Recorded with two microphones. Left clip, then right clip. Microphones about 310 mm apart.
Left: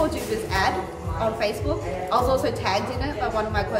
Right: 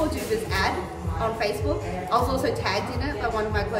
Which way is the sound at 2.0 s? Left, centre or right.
Centre.